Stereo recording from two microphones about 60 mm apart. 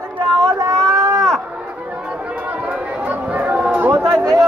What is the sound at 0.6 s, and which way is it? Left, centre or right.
Speech, right.